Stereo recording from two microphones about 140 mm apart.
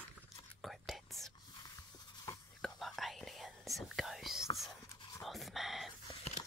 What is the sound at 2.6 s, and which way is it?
Whispering, centre (ahead or behind).